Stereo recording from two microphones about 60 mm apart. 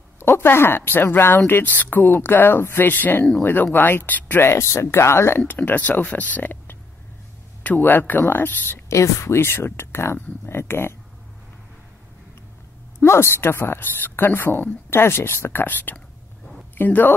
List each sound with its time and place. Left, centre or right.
0.2 s a woman's voice: left
1.5 s a woman's voice: left
2.9 s a woman's voice: left
4.5 s speech: left
5.5 s a woman's voice: left
8.8 s speech: left
13.0 s a woman's voice: left